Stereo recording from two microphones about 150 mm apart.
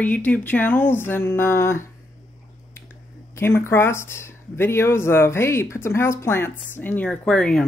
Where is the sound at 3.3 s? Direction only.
15° left (ahead or behind).